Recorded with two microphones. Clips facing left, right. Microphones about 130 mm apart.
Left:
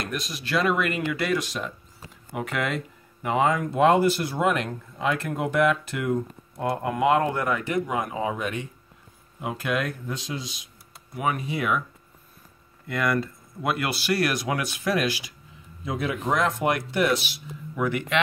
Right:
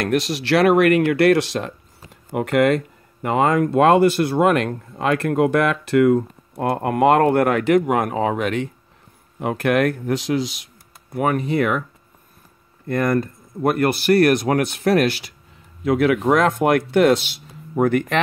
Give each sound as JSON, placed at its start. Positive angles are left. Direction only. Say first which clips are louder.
{"t": 0.0, "sound": "speech", "louder": "right 11 dB", "side_deg": -75}
{"t": 2.3, "sound": "speech", "louder": "right 11 dB", "side_deg": -60}
{"t": 11.1, "sound": "speech", "louder": "right 8 dB", "side_deg": -55}
{"t": 12.8, "sound": "speech", "louder": "right 6 dB", "side_deg": -45}
{"t": 15.8, "sound": "speech", "louder": "right 11 dB", "side_deg": -80}